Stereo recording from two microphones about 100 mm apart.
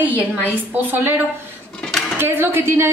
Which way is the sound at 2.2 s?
25° right (ahead or behind).